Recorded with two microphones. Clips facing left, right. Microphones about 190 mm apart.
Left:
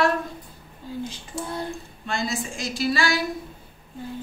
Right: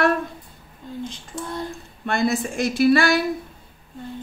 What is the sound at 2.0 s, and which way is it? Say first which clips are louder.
Speech: right 7 dB; 60° right (ahead or behind).